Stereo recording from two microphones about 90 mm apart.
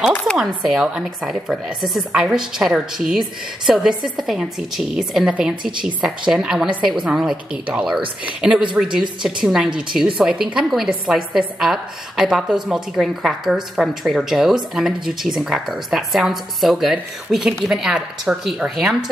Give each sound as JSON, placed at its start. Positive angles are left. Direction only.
{"t": 0.4, "sound": "a woman's voice", "side_deg": 0}